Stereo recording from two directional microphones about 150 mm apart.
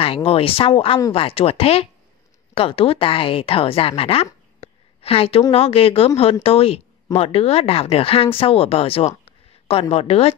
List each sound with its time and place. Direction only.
0.0 s a woman's voice: 40° left (ahead or behind)